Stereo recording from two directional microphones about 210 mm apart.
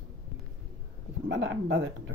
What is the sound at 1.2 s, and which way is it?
Speech, 60° right (ahead or behind).